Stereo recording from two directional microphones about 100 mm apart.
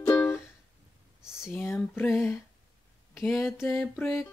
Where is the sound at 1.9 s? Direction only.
25° left (ahead or behind).